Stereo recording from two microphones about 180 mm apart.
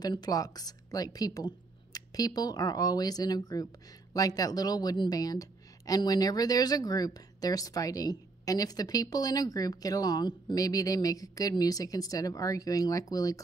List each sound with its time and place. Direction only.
0.0 s speech: 20° left (ahead or behind)